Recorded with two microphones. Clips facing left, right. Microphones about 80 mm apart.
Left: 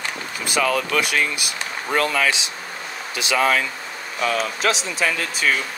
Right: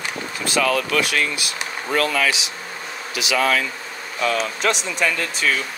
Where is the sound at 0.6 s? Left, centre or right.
Centre.